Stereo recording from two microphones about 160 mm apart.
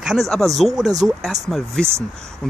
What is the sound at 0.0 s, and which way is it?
Speech, centre (ahead or behind).